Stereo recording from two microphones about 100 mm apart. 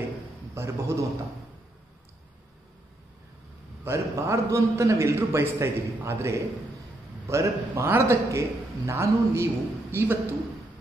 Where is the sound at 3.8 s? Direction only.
30° right (ahead or behind).